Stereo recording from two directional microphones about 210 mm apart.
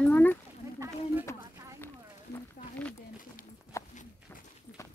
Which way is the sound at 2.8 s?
5° left (ahead or behind).